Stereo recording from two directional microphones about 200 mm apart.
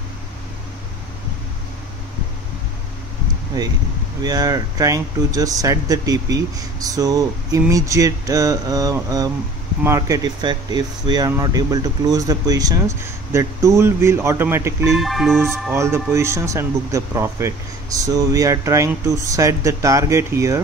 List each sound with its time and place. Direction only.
3.6 s speech: 20° right (ahead or behind)
15.0 s speech: centre (ahead or behind)
15.7 s speech: 15° right (ahead or behind)